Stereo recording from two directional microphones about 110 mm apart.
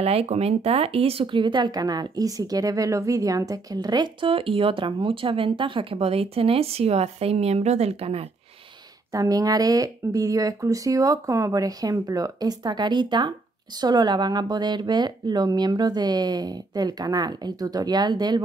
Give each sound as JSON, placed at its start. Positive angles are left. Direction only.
{"t": 0.0, "sound": "speech", "side_deg": -65}
{"t": 5.9, "sound": "a woman's voice", "side_deg": -65}
{"t": 9.1, "sound": "speech", "side_deg": -35}